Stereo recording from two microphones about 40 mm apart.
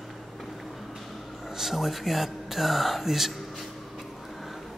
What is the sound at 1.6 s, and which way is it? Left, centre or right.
Speech, centre.